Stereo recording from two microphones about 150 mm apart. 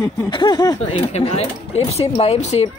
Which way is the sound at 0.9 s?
45° left (ahead or behind).